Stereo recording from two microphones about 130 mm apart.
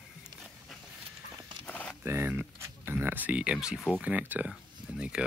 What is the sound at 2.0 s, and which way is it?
Speech, 15° right (ahead or behind).